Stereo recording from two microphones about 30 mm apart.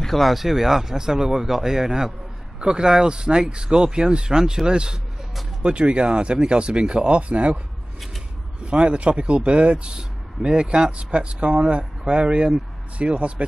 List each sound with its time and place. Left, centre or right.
0.0 s a sound: centre
0.3 s speech: centre; by 7.6 s right
8.6 s speech: right
9.9 s speech: right